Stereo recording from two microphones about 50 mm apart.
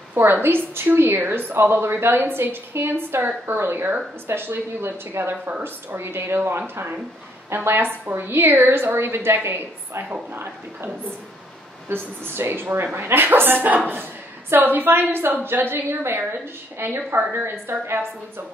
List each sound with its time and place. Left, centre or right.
0.1 s a woman's voice: right
11.9 s a woman's voice: right